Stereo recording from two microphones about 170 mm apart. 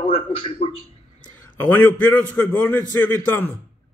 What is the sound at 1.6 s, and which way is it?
A man's voice, 15° left (ahead or behind).